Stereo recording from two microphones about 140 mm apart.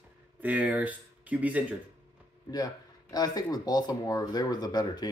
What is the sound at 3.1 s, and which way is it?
Speech, 30° left (ahead or behind).